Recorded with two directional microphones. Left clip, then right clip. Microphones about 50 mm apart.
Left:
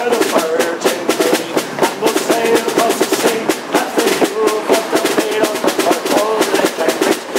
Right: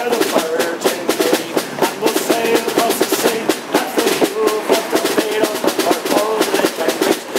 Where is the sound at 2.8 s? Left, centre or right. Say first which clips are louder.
Left 2 dB; centre.